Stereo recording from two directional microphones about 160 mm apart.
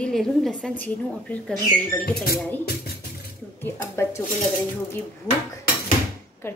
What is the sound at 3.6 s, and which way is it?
Speech, 15° left (ahead or behind).